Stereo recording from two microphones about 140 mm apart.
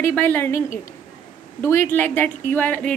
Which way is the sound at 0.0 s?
15° left (ahead or behind).